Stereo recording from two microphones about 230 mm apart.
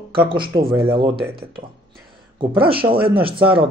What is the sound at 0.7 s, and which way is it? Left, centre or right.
Speech, right.